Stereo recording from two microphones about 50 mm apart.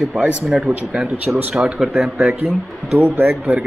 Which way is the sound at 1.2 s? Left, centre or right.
Right.